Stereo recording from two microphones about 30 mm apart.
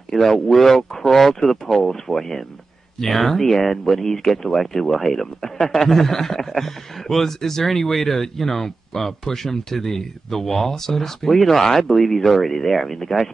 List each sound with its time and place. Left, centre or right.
0.1 s speech: centre